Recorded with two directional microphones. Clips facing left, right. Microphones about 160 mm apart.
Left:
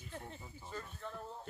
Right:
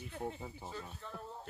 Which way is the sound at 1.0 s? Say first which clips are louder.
Left 2 dB; centre (ahead or behind).